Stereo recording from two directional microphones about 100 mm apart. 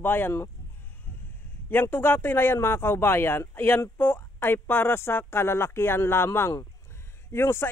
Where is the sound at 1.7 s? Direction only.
20° left (ahead or behind).